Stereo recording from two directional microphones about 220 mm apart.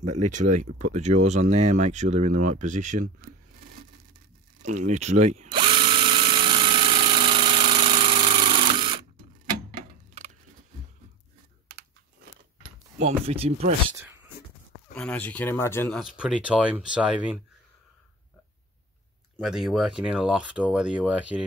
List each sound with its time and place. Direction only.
0.0 s speech: 35° right (ahead or behind)
4.6 s drill: 35° right (ahead or behind)
13.0 s speech: 25° right (ahead or behind)
15.0 s speech: 5° left (ahead or behind)
16.0 s speech: 5° right (ahead or behind)
19.3 s speech: 5° right (ahead or behind)